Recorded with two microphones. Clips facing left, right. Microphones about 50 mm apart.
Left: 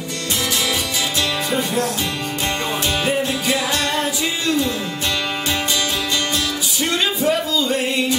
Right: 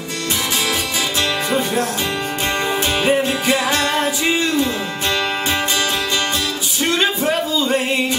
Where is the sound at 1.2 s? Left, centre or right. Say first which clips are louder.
Right 3 dB; right.